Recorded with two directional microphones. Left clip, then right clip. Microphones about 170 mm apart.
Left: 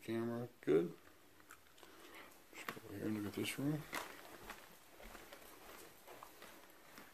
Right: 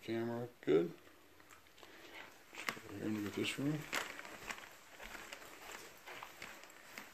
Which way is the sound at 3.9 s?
20° right (ahead or behind).